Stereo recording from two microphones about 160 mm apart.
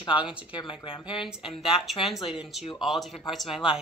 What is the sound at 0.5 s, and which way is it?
Speech, 30° left (ahead or behind).